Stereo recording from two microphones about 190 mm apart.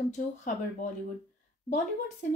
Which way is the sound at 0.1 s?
40° left (ahead or behind).